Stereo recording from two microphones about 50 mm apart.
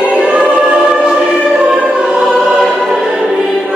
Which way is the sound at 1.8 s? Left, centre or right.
Centre.